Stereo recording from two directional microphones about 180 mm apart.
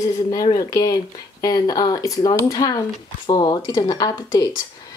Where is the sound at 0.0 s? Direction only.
20° left (ahead or behind).